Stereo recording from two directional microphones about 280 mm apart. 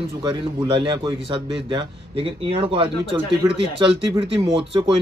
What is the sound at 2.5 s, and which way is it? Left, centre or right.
A man's voice, centre.